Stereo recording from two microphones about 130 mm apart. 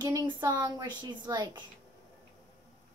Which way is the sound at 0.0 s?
30° right (ahead or behind).